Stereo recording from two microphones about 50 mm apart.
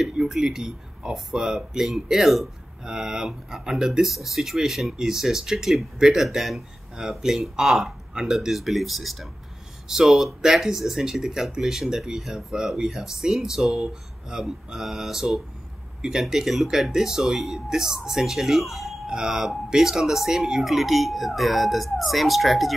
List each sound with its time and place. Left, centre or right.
0.0 s speech: centre
19.0 s speech: centre